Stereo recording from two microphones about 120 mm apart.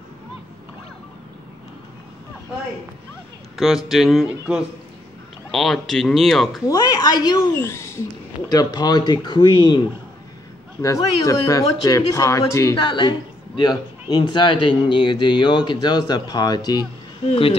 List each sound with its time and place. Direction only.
3.5 s speech: centre (ahead or behind)
6.7 s speech: 30° left (ahead or behind)
7.5 s speech: 20° left (ahead or behind)
8.5 s speech: 35° left (ahead or behind)
10.8 s a woman's voice: 30° left (ahead or behind)
12.7 s speech: 40° left (ahead or behind)
17.3 s speech: 55° left (ahead or behind)